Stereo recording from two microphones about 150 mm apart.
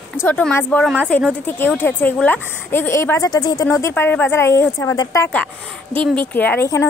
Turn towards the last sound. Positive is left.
turn(degrees=15)  # may be behind; listen again after turning